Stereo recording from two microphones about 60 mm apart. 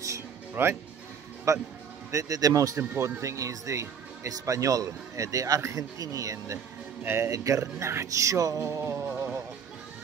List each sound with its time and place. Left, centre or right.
0.6 s speech: right
1.5 s speech: right
3.0 s speech: right
7.6 s speech: right
8.8 s music: right